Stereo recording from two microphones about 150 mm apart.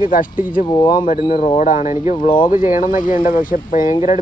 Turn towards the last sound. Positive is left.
turn(degrees=65)  # may be behind; listen again after turning